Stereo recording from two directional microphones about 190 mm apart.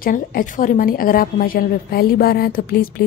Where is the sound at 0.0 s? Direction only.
45° left (ahead or behind).